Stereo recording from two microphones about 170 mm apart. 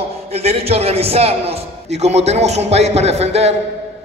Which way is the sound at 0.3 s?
35° right (ahead or behind).